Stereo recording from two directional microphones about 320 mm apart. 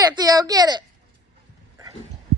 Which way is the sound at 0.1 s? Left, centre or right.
Centre.